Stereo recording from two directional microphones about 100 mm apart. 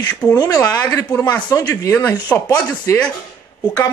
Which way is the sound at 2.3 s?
15° left (ahead or behind).